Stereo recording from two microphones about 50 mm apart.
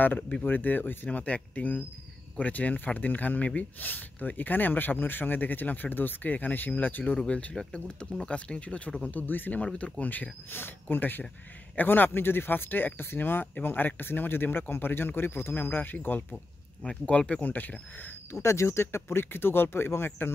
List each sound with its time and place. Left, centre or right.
0.4 s speech: left
7.2 s speech: left
9.1 s speech: left
16.8 s speech: left
18.3 s speech: left